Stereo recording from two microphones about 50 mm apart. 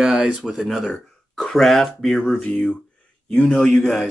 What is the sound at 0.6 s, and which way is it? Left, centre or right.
Speech, centre.